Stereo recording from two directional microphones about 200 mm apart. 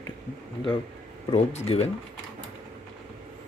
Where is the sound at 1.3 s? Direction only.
30° left (ahead or behind).